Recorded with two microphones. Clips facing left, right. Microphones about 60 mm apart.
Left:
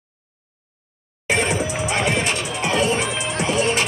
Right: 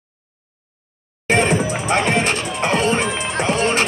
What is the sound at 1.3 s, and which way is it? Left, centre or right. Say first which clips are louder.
Music: right 4 dB; right.